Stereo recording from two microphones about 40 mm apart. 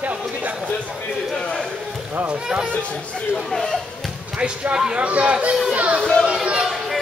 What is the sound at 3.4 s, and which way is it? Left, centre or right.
Speech, centre.